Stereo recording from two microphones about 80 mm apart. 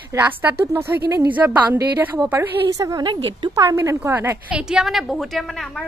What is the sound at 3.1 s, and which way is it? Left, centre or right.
Speech, right.